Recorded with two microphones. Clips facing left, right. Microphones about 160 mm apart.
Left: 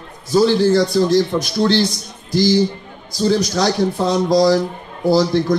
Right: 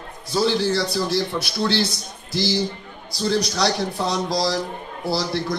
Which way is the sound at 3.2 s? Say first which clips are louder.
Left 5 dB; 45° left (ahead or behind).